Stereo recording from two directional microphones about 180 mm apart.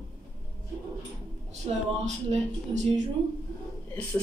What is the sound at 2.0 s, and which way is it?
Speech, 40° right (ahead or behind).